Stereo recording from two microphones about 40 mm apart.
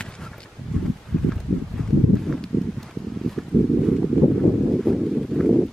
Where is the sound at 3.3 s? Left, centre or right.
Centre.